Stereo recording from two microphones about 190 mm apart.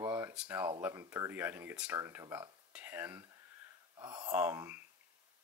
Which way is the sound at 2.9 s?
10° right (ahead or behind).